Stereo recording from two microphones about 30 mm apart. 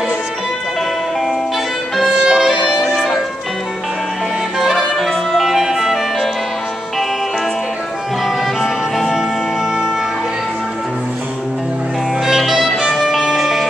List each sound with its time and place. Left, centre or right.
2.0 s music: right
2.6 s music: centre
4.7 s clarinet: centre
5.5 s music: centre
8.5 s music: centre
12.3 s music: centre